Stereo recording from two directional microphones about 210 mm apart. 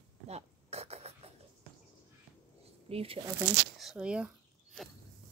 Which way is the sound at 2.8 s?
25° right (ahead or behind).